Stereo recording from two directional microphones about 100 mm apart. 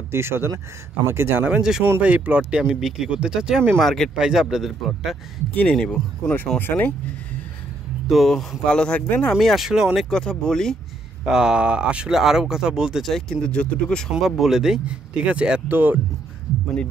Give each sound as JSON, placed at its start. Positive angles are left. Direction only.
{"t": 0.1, "sound": "speech", "side_deg": -25}
{"t": 3.7, "sound": "speech", "side_deg": 5}
{"t": 4.1, "sound": "speech", "side_deg": -5}
{"t": 5.5, "sound": "speech", "side_deg": 10}
{"t": 8.1, "sound": "speech", "side_deg": 0}
{"t": 11.2, "sound": "speech", "side_deg": -5}